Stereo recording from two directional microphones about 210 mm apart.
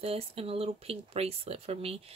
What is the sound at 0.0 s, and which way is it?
Speech, 30° right (ahead or behind).